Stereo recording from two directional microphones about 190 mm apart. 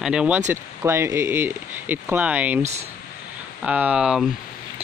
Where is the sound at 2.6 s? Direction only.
35° right (ahead or behind).